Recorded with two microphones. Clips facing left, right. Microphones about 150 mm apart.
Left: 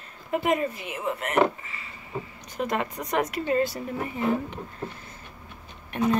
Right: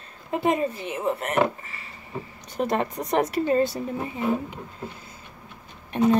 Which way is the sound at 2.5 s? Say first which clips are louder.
Right 3 dB; 35° right (ahead or behind).